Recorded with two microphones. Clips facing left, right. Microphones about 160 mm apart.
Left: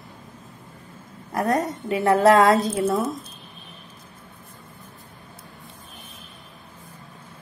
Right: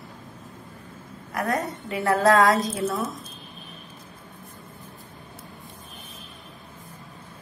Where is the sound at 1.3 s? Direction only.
20° left (ahead or behind).